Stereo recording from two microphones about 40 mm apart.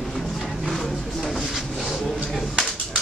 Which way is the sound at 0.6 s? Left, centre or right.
Centre.